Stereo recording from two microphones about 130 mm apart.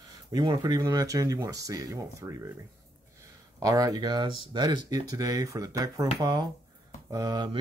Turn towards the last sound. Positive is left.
turn(degrees=-35)  # may be behind; listen again after turning